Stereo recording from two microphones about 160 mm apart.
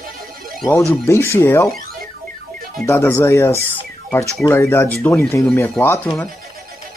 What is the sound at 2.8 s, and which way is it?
Speech, 15° left (ahead or behind).